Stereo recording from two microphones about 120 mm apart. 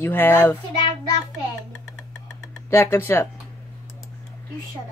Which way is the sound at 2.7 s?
20° left (ahead or behind).